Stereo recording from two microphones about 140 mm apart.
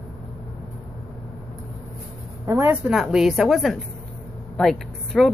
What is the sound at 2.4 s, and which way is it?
Speech, 15° right (ahead or behind).